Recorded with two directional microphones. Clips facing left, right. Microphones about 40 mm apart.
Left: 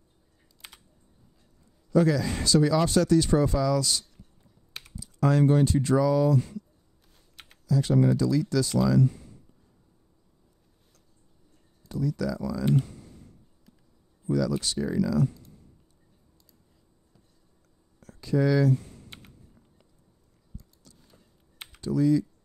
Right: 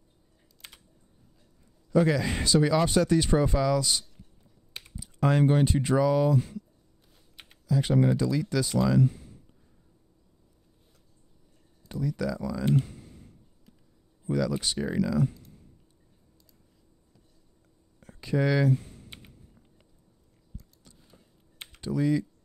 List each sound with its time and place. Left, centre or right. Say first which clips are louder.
0.6 s typing: left 1 dB; centre
1.9 s speech: left 1 dB; right
7.1 s typing: left 1 dB; centre
7.6 s speech: left 1 dB; right
9.1 s a sound: left 1 dB; centre
11.9 s speech: left 1 dB; right
12.7 s a sound: left 1 dB; centre
14.3 s speech: left 1 dB; right
18.0 s speech: left 2 dB; right
18.7 s computer keyboard: left 1 dB; centre
21.8 s speech: left 3 dB; right